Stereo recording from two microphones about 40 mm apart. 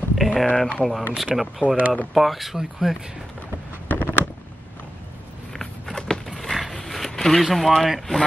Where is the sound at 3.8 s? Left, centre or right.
Left.